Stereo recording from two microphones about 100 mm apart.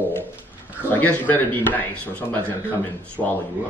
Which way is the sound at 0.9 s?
15° left (ahead or behind).